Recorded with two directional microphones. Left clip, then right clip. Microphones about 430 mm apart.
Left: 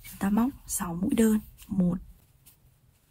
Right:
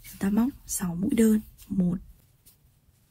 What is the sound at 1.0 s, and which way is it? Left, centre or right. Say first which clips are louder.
Speech: right 2 dB; centre.